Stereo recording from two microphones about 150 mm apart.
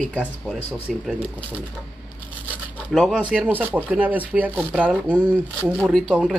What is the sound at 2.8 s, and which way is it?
Speech, centre (ahead or behind).